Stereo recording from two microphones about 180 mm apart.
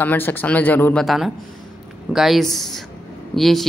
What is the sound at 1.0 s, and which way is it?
Speech, centre (ahead or behind).